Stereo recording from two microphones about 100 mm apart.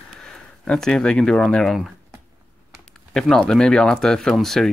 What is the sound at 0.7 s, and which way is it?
Speech, 5° left (ahead or behind).